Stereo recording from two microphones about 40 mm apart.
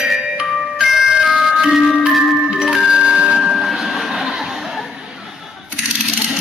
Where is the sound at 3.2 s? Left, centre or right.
Centre.